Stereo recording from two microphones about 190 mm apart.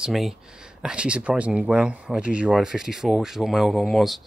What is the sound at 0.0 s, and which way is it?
Speech, centre (ahead or behind).